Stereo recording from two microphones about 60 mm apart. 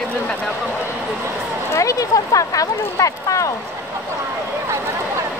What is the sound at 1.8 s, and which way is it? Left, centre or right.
Speech, left.